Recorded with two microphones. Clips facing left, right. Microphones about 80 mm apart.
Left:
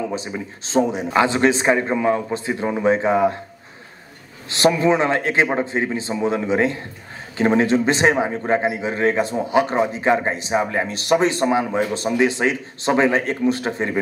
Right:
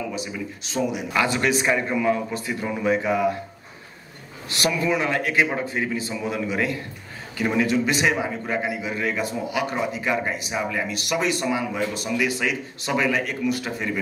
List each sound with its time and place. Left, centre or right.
0.1 s a man's voice: left
4.5 s a man's voice: left